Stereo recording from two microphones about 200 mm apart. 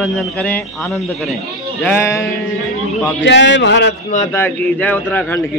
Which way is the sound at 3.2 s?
65° left (ahead or behind).